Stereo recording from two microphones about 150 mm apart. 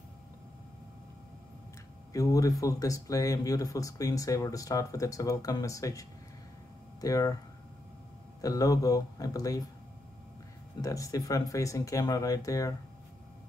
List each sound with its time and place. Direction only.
2.1 s speech: 25° left (ahead or behind)
8.4 s speech: 25° left (ahead or behind)
10.8 s speech: 25° left (ahead or behind)